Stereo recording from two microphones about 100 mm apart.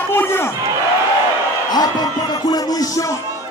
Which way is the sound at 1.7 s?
45° left (ahead or behind).